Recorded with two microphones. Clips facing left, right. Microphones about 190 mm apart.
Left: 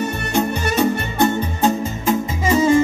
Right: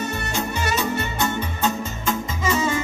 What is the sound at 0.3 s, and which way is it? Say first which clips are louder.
Music: left 7 dB; 60° left (ahead or behind).